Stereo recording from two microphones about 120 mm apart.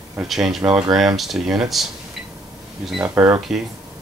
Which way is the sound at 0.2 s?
Centre (ahead or behind).